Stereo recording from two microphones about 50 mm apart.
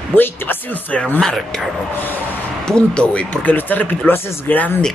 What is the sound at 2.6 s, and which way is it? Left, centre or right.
Speech, centre.